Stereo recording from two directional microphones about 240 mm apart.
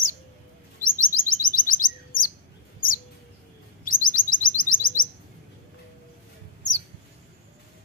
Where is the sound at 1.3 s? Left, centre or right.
Left.